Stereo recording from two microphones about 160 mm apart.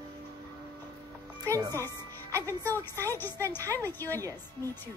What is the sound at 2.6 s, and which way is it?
Speech, 15° left (ahead or behind).